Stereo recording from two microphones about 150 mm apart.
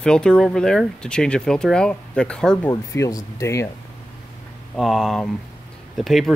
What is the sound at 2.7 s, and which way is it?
Speech, 25° left (ahead or behind).